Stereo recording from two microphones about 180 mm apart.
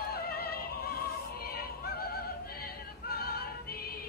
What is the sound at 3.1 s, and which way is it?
Music, 60° left (ahead or behind).